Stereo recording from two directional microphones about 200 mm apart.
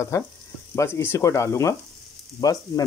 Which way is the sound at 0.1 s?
15° left (ahead or behind).